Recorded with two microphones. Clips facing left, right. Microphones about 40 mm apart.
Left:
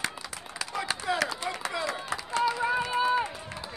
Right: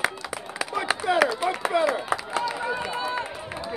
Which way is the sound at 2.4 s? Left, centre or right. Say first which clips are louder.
Left 1 dB; centre.